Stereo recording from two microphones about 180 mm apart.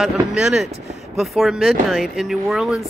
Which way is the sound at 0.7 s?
40° right (ahead or behind).